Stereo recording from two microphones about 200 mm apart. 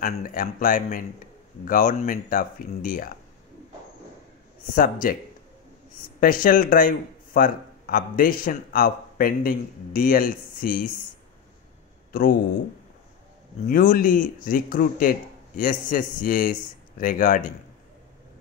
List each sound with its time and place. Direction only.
0.0 s speech: 45° left (ahead or behind)
4.7 s speech: 45° left (ahead or behind)
6.1 s speech: 45° left (ahead or behind)
12.1 s speech: 45° left (ahead or behind)
13.7 s speech: 45° left (ahead or behind)